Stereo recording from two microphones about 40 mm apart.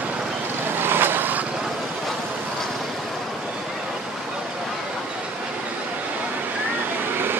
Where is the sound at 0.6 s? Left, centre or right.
Right.